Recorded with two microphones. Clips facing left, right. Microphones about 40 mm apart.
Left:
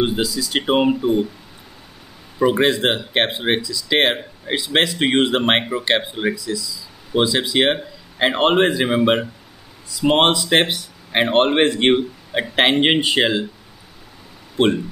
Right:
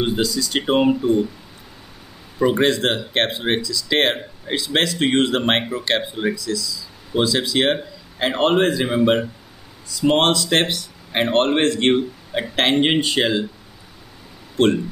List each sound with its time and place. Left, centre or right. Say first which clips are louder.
0.0 s speech: left 1 dB; centre
2.3 s speech: left 1 dB; centre
14.6 s speech: even; centre